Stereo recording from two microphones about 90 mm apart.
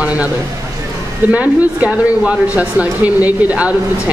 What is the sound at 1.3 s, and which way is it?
Speech, 15° right (ahead or behind).